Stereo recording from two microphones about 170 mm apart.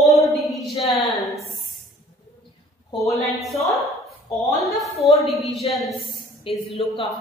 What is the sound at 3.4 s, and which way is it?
A woman's voice, centre (ahead or behind).